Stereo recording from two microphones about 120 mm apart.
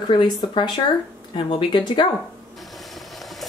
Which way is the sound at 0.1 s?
40° left (ahead or behind).